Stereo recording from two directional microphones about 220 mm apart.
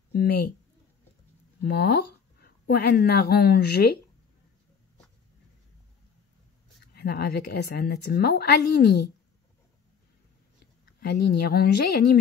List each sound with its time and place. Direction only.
0.1 s speech: 45° left (ahead or behind)
1.6 s speech: 50° left (ahead or behind)
7.0 s a woman's voice: 45° left (ahead or behind)
11.0 s a woman's voice: 45° left (ahead or behind)